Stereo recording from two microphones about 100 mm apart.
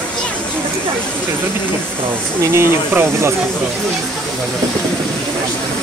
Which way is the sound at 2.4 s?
25° right (ahead or behind).